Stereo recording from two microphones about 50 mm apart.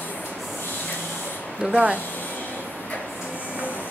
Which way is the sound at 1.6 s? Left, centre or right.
Right.